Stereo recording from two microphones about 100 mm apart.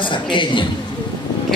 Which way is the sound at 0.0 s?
55° left (ahead or behind).